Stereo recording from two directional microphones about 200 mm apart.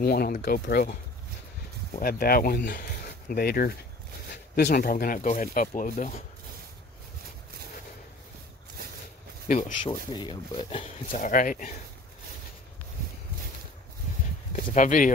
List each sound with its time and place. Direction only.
0.0 s speech: 50° left (ahead or behind)
2.0 s speech: 50° left (ahead or behind)
9.5 s speech: 40° left (ahead or behind)
9.8 s speech: 25° left (ahead or behind)
11.1 s speech: 40° left (ahead or behind)
14.5 s speech: 40° left (ahead or behind)